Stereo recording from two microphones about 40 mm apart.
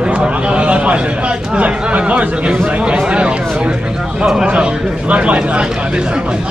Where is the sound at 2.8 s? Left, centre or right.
Right.